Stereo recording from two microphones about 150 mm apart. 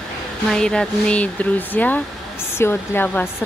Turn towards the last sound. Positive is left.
turn(degrees=15)  # may be behind; listen again after turning